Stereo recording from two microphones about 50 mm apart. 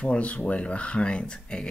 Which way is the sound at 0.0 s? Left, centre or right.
Left.